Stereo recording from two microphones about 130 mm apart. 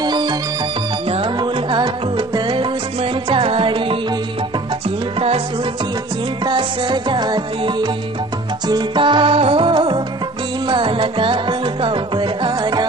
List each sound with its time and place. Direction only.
0.0 s music: 35° right (ahead or behind)
6.4 s music: 35° right (ahead or behind)